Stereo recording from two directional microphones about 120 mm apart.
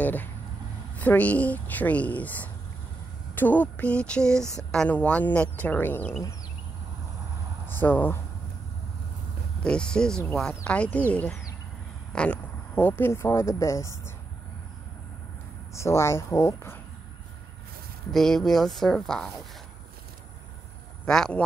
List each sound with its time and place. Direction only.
0.0 s speech: 15° left (ahead or behind)
7.6 s speech: 15° left (ahead or behind)
9.6 s speech: 5° left (ahead or behind); by 14.1 s 25° left (ahead or behind)
15.7 s a woman's voice: 25° left (ahead or behind)
18.1 s speech: 5° left (ahead or behind)
21.0 s speech: 5° left (ahead or behind)